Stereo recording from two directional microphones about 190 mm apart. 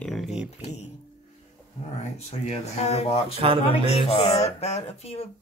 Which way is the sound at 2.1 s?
35° left (ahead or behind).